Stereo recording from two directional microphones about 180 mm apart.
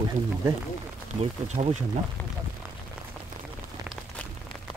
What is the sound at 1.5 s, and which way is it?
Speech, 40° right (ahead or behind).